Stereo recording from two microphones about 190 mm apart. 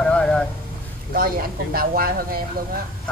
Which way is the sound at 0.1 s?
5° left (ahead or behind).